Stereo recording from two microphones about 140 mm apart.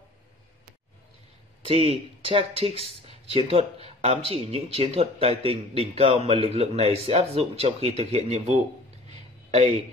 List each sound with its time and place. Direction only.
1.7 s speech: 45° right (ahead or behind)